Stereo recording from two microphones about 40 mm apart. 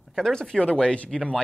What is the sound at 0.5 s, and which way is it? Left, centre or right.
Speech, left.